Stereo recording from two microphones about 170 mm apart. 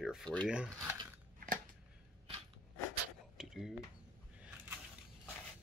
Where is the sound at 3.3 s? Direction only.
Centre (ahead or behind).